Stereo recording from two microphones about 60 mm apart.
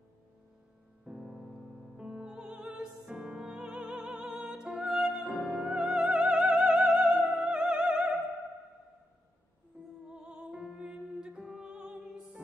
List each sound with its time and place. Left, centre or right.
1.0 s music: centre
2.9 s music: centre
3.2 s music: centre
10.0 s music: centre